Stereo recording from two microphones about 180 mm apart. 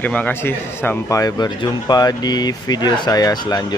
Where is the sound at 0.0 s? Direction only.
10° left (ahead or behind).